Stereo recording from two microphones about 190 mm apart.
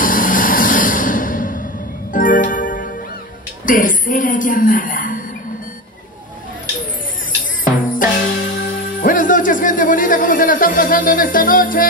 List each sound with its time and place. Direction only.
0.0 s a sound: 45° left (ahead or behind)
2.1 s music: 45° left (ahead or behind)
3.6 s a woman's voice: 45° left (ahead or behind)
7.6 s music: 45° left (ahead or behind)